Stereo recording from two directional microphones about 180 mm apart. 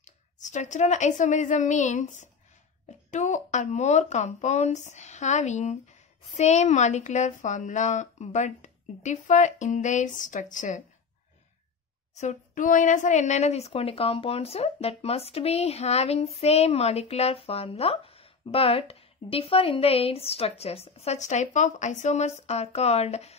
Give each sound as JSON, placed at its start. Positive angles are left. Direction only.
{"t": 0.0, "sound": "speech", "side_deg": 40}
{"t": 12.2, "sound": "speech", "side_deg": 45}